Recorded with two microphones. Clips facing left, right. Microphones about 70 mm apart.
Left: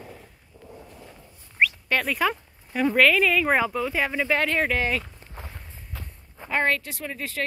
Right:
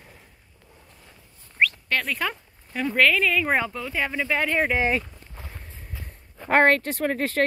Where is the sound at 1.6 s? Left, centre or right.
Centre.